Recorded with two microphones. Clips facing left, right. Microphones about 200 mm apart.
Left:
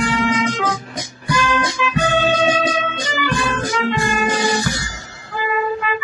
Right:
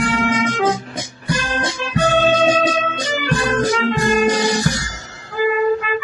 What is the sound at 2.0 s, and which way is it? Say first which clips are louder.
Music: right 3 dB; 45° right (ahead or behind).